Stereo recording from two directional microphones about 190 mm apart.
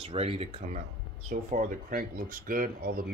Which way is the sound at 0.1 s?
30° right (ahead or behind).